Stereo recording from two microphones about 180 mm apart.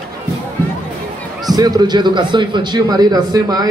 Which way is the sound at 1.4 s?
20° right (ahead or behind).